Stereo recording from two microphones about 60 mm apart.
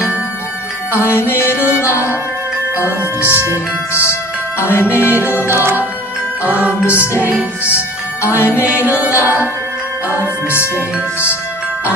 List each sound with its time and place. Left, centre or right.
0.9 s music: left
2.8 s music: right
3.9 s music: left
4.8 s music: right
6.4 s music: right
6.9 s music: left
9.1 s music: right